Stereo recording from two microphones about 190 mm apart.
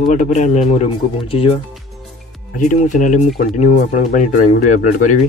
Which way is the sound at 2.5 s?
40° left (ahead or behind).